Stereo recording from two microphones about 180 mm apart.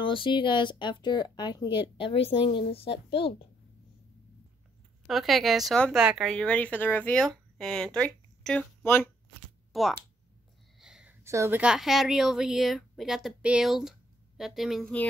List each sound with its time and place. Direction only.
0.0 s speech: 30° left (ahead or behind)
5.0 s speech: centre (ahead or behind)
9.7 s typing: centre (ahead or behind)
10.8 s a sound: 5° right (ahead or behind)
11.2 s speech: 15° right (ahead or behind); by 15.0 s 5° left (ahead or behind)